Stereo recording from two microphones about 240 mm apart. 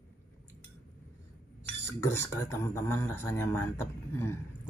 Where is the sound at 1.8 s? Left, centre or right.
Centre.